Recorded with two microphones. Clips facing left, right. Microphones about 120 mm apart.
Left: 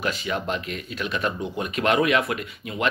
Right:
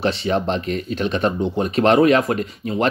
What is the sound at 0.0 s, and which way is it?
Speech, 35° right (ahead or behind).